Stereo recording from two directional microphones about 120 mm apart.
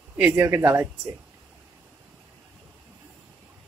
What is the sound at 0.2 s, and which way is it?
Speech, 20° right (ahead or behind).